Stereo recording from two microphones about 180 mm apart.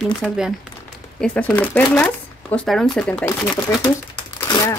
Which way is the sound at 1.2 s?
10° left (ahead or behind).